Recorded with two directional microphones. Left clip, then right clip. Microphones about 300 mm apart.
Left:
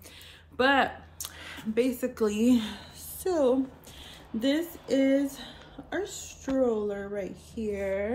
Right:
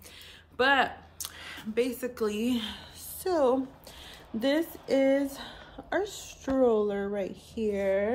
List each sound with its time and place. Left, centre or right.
0.6 s speech: centre
3.3 s a woman's voice: centre; by 8.1 s right